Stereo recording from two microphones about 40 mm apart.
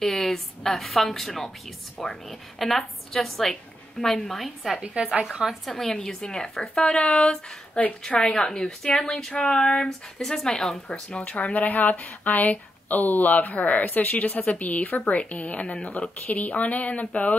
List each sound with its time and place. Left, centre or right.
0.0 s a woman's voice: centre
4.8 s a woman's voice: right
5.3 s a woman's voice: centre
5.7 s speech: centre
6.0 s a woman's voice: left
10.9 s speech: left
11.5 s speech: left